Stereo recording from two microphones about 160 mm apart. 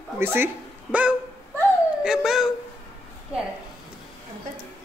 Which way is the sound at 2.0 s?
5° right (ahead or behind).